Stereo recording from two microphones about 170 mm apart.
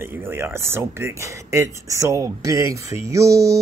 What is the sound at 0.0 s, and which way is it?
Speech, 15° right (ahead or behind).